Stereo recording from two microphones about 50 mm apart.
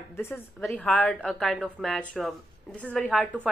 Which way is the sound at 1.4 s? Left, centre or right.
Centre.